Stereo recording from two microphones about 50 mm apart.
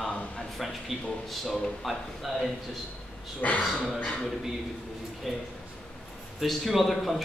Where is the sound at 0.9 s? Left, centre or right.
Centre.